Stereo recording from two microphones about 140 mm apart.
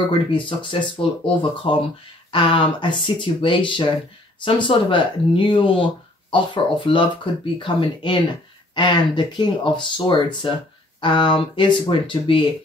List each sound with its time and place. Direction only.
0.3 s speech: 35° left (ahead or behind)